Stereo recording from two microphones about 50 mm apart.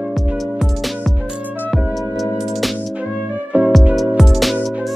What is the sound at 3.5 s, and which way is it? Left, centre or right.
Music, right.